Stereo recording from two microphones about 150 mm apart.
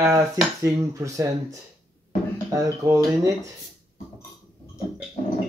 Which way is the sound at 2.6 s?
20° right (ahead or behind).